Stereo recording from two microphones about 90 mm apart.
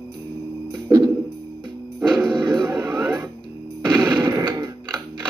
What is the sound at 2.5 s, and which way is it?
Music, 30° right (ahead or behind).